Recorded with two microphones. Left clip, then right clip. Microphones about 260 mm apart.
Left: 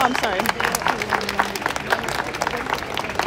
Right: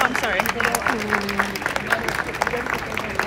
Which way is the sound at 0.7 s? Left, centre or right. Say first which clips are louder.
Even; left.